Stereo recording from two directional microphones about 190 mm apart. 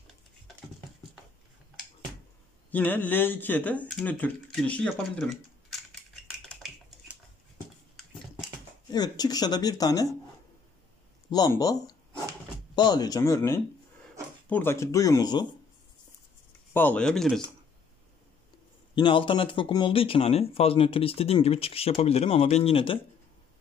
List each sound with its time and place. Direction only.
2.7 s speech: 10° left (ahead or behind)
6.5 s a sound: centre (ahead or behind)
8.8 s speech: 20° left (ahead or behind)
11.2 s speech: 20° left (ahead or behind)
16.7 s speech: 10° left (ahead or behind)
18.9 s speech: 25° left (ahead or behind)